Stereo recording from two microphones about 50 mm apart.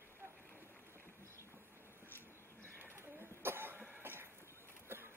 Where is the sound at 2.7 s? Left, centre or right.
Right.